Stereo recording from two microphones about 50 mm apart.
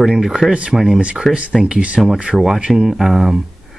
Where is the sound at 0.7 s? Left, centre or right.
Centre.